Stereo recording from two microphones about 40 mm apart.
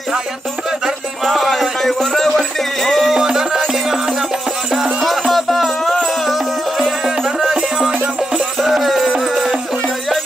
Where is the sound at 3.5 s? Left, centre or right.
Centre.